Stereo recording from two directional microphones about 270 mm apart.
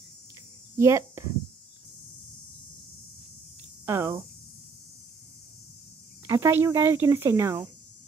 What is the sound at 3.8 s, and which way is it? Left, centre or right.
Speech, centre.